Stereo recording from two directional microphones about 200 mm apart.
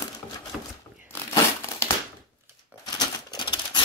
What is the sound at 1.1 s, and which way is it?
Crumpling, 15° left (ahead or behind).